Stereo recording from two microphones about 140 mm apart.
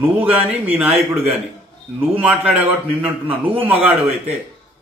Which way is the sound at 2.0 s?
10° right (ahead or behind).